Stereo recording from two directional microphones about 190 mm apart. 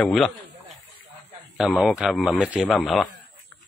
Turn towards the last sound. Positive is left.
turn(degrees=5)  # may be behind; listen again after turning